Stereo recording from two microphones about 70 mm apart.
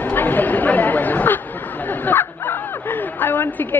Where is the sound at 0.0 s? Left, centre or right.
Left.